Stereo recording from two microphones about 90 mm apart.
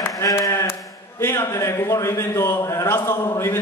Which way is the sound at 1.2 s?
30° left (ahead or behind).